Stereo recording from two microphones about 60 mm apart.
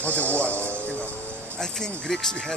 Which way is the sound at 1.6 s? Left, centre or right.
Centre.